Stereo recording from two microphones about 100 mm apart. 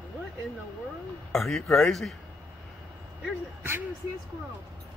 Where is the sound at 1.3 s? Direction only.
Centre (ahead or behind).